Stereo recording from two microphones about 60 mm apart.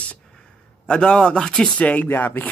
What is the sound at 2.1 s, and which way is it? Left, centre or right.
Speech, left.